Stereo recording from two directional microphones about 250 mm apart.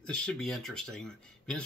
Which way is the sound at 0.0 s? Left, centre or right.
Centre.